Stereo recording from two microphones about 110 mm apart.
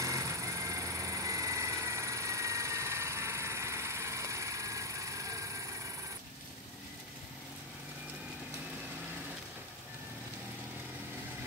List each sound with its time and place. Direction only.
0.0 s vehicle: 30° right (ahead or behind)